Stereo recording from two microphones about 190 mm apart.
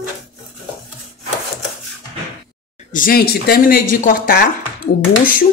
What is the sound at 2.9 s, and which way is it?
Speech, 50° left (ahead or behind).